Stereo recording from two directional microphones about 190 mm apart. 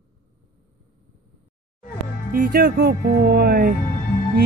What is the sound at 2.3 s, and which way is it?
Speech, 50° right (ahead or behind).